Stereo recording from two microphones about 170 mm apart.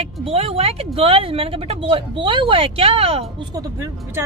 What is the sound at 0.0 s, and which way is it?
Speech, 35° right (ahead or behind).